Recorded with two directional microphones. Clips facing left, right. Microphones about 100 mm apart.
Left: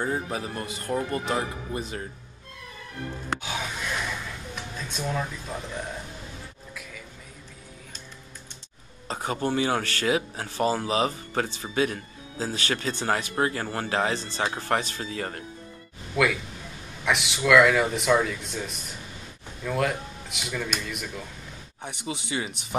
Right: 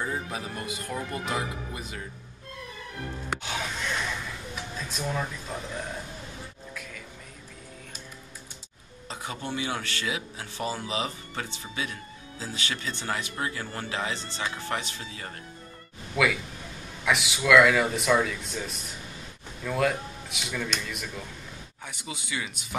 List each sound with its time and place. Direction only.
0.0 s speech: 35° left (ahead or behind)
3.4 s gasp: 5° left (ahead or behind)
4.7 s speech: centre (ahead or behind)
6.7 s music: 5° left (ahead or behind)
9.0 s speech: 45° left (ahead or behind)
16.1 s speech: centre (ahead or behind)
21.8 s speech: 30° left (ahead or behind)